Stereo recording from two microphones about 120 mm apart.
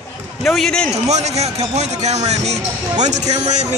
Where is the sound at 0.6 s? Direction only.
5° left (ahead or behind).